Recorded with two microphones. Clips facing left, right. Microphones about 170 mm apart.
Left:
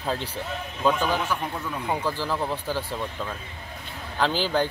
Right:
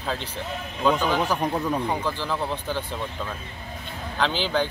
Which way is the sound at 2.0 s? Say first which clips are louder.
Even; 10° left (ahead or behind).